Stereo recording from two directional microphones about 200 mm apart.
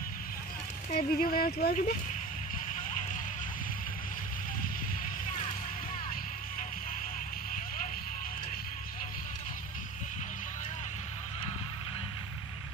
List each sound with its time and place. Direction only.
0.9 s speech: 45° left (ahead or behind)
2.7 s slosh: 40° left (ahead or behind)
7.5 s vehicle: 40° left (ahead or behind)